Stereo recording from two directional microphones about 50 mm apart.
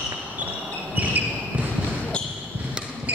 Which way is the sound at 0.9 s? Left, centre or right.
Right.